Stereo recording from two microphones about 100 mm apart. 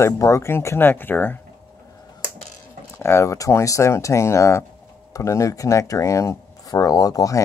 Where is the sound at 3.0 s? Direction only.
25° left (ahead or behind).